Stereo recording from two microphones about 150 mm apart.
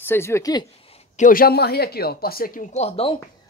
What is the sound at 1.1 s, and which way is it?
Speech, 65° left (ahead or behind).